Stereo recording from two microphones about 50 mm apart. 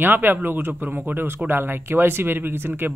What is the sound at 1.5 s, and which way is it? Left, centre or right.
A man's voice, right.